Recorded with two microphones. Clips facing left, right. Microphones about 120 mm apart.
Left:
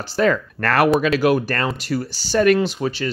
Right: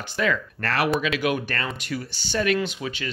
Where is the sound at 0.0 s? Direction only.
40° left (ahead or behind).